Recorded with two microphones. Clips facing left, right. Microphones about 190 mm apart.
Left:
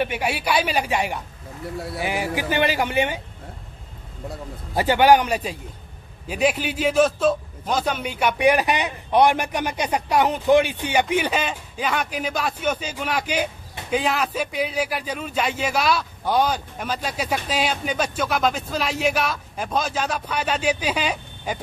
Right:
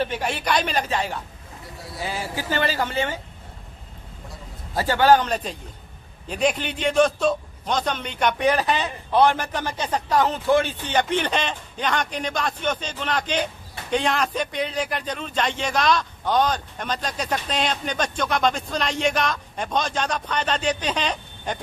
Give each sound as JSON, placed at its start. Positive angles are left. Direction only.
{"t": 0.0, "sound": "a man's voice", "side_deg": 10}
{"t": 4.7, "sound": "a man's voice", "side_deg": 15}